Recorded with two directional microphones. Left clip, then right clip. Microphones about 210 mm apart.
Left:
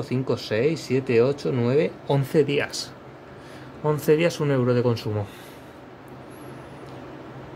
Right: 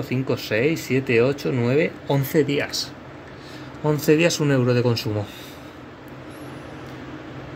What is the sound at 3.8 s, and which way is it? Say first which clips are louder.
Speech: right 2 dB; 5° right (ahead or behind).